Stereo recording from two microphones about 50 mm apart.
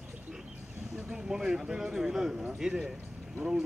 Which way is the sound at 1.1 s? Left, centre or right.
Centre.